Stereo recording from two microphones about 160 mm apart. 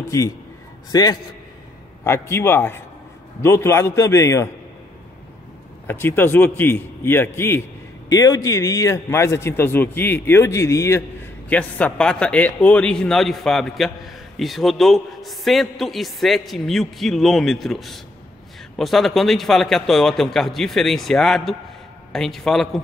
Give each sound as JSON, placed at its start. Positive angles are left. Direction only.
{"t": 0.9, "sound": "a man's voice", "side_deg": 25}
{"t": 5.9, "sound": "a man's voice", "side_deg": 15}